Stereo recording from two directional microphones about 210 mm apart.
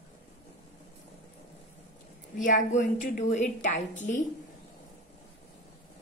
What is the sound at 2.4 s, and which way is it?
A woman's voice, 40° left (ahead or behind).